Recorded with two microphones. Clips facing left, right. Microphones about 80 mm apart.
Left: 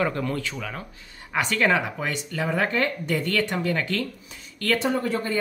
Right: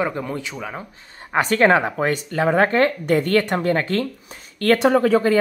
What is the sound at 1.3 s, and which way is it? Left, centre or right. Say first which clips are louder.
Speech: right 6 dB; right.